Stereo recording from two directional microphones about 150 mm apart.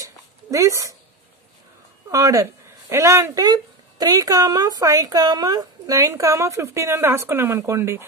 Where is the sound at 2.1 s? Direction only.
20° right (ahead or behind).